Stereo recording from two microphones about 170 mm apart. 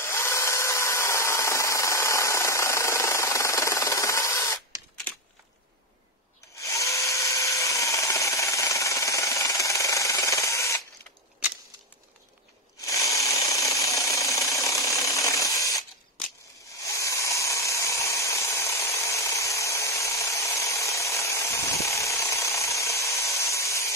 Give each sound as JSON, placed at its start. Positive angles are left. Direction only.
{"t": 0.0, "sound": "tools", "side_deg": 15}
{"t": 6.6, "sound": "tools", "side_deg": 20}
{"t": 12.8, "sound": "jackhammer", "side_deg": 20}
{"t": 16.8, "sound": "tools", "side_deg": 15}